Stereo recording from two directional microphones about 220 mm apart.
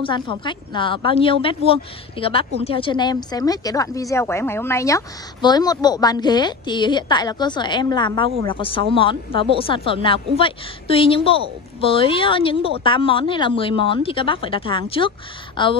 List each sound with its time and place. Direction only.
0.0 s a woman's voice: 20° left (ahead or behind)